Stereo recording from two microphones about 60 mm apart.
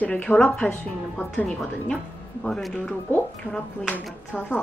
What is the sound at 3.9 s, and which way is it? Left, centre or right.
Speech, left.